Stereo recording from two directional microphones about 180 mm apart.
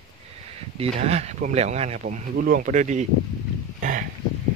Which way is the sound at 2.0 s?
50° right (ahead or behind).